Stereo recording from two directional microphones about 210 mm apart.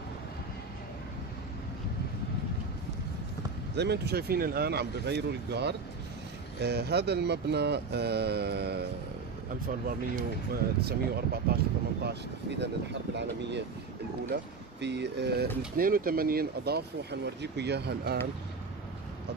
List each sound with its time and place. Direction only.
3.7 s speech: 55° right (ahead or behind)
9.8 s speech: 45° right (ahead or behind)